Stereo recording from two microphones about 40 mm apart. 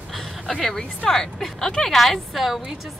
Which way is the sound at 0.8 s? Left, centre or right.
Centre.